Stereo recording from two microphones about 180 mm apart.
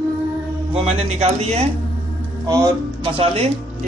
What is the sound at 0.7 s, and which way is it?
Speech, 35° right (ahead or behind).